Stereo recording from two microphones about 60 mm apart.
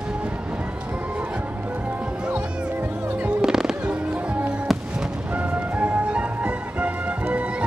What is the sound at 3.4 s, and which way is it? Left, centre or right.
Fireworks, centre.